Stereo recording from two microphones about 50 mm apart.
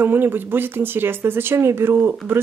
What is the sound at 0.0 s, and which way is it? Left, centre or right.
Speech, right.